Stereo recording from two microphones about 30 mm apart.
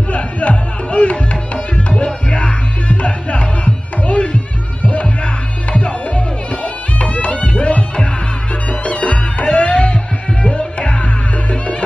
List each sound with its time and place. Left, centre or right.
0.1 s music: left